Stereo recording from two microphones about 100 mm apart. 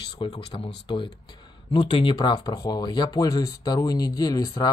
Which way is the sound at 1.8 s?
60° left (ahead or behind).